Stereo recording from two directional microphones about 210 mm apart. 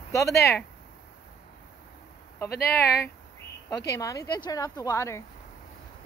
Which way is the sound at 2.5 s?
45° left (ahead or behind).